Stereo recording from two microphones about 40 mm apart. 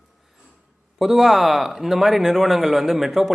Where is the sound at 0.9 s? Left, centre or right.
Centre.